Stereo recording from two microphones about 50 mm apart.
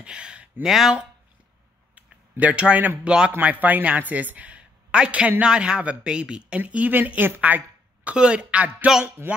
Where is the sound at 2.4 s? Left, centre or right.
Right.